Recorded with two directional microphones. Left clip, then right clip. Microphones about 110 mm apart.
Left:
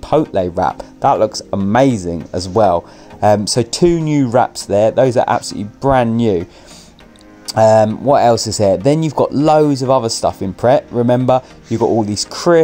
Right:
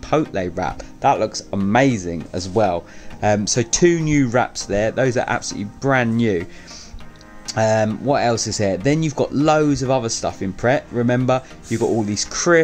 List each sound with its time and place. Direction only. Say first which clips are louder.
0.0 s speech: left 6 dB; 30° left (ahead or behind)
7.4 s speech: left 8 dB; 35° left (ahead or behind)